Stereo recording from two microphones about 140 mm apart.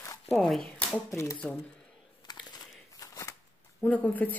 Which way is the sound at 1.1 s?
20° left (ahead or behind).